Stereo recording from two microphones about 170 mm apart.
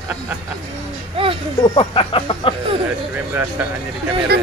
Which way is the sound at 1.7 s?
30° left (ahead or behind).